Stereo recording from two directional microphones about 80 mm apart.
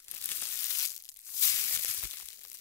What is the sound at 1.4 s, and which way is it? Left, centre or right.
Maraca, left.